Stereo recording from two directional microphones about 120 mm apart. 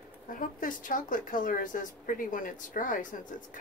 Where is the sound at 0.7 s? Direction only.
90° left.